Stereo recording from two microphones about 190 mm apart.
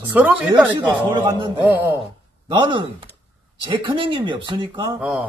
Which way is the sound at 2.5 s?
25° right (ahead or behind).